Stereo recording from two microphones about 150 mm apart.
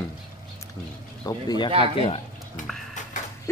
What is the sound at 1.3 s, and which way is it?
Speech, 25° left (ahead or behind).